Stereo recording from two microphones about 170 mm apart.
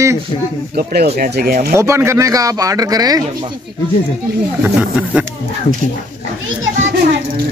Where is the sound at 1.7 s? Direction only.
15° right (ahead or behind).